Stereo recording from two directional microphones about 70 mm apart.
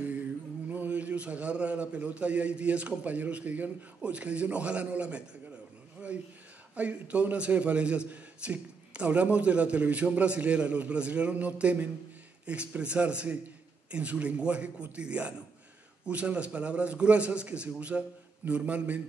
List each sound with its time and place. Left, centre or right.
0.7 s a man's voice: right
6.7 s a man's voice: centre